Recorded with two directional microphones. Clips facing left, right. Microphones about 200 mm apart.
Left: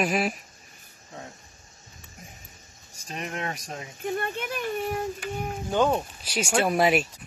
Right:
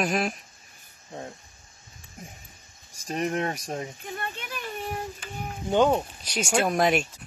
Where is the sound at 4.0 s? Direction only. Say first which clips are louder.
Left 7 dB; 50° left (ahead or behind).